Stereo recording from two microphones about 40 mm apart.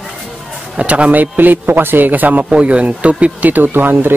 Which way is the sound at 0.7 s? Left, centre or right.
Right.